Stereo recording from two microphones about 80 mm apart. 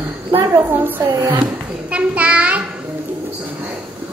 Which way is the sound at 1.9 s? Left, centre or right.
Centre.